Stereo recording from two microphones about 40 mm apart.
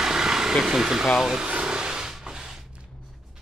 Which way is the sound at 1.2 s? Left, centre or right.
Centre.